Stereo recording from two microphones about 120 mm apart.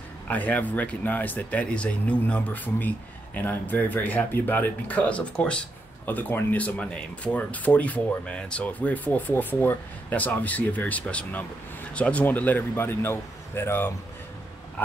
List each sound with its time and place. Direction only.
0.3 s speech: 15° left (ahead or behind)